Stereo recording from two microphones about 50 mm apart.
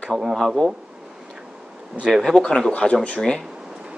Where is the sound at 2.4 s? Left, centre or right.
Centre.